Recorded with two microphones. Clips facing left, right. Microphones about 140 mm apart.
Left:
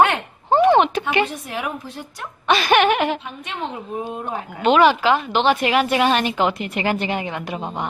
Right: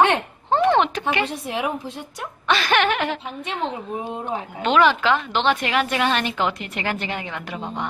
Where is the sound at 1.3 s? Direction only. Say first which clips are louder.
Right 2 dB; 30° right (ahead or behind).